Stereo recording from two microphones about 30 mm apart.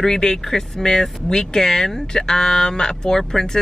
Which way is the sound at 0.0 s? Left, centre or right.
Centre.